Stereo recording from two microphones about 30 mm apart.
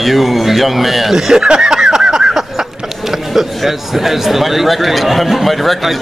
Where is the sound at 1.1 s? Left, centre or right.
Centre.